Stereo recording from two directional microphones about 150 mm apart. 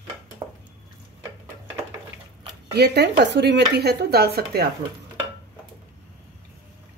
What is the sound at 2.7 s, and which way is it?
Speech, 90° right.